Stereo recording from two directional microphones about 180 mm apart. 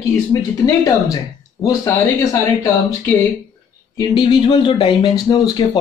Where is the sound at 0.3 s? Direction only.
20° left (ahead or behind).